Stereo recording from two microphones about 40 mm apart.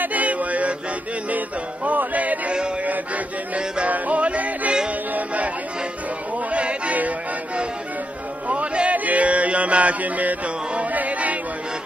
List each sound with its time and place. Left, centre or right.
0.0 s music: right
1.9 s music: right
3.5 s music: right
6.5 s music: right
8.5 s a sound: right
10.8 s music: right